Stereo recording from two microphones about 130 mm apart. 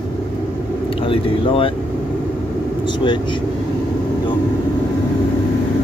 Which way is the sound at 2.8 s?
40° left (ahead or behind).